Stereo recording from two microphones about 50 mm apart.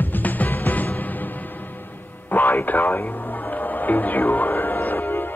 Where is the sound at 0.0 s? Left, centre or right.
Left.